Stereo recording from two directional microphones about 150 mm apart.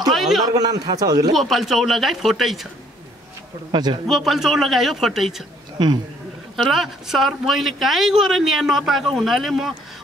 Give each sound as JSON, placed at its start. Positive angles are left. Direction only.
{"t": 0.1, "sound": "a sound", "side_deg": 0}
{"t": 0.6, "sound": "a man's voice", "side_deg": -25}
{"t": 1.3, "sound": "speech", "side_deg": 0}
{"t": 3.7, "sound": "a man's voice", "side_deg": -30}
{"t": 4.1, "sound": "speech", "side_deg": 0}
{"t": 5.8, "sound": "a man's voice", "side_deg": -30}
{"t": 6.5, "sound": "speech", "side_deg": 0}